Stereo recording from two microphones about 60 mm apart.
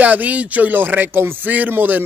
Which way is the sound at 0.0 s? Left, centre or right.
Right.